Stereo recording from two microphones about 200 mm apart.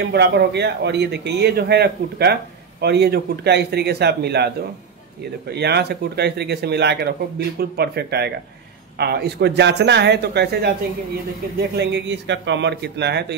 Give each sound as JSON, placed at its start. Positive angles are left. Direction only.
{"t": 0.0, "sound": "speech", "side_deg": -55}
{"t": 11.7, "sound": "speech", "side_deg": -60}